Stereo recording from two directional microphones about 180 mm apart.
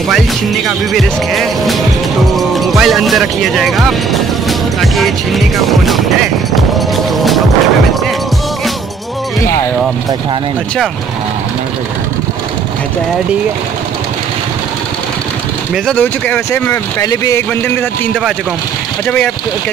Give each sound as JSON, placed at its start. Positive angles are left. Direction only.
{"t": 0.7, "sound": "speech", "side_deg": 0}
{"t": 7.2, "sound": "music", "side_deg": 0}
{"t": 15.7, "sound": "speech", "side_deg": 5}
{"t": 19.0, "sound": "speech", "side_deg": 5}